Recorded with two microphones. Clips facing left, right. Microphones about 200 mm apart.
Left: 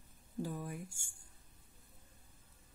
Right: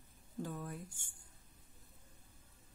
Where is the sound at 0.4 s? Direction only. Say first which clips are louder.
Left 2 dB; 10° left (ahead or behind).